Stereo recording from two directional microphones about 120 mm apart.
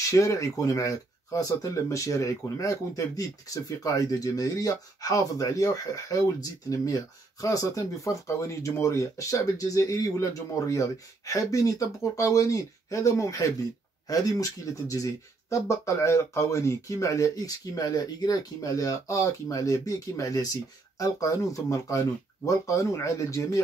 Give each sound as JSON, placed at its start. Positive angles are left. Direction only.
{"t": 0.1, "sound": "speech", "side_deg": 25}